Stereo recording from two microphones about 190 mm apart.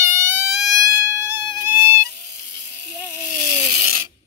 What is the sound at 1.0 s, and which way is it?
Music, 15° right (ahead or behind).